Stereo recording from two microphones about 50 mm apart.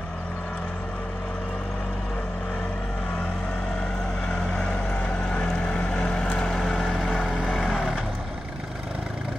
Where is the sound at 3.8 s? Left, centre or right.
Centre.